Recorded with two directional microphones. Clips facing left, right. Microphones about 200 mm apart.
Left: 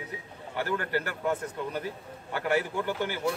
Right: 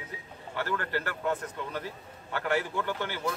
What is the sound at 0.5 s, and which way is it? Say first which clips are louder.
A man's voice: left 2 dB; 15° left (ahead or behind).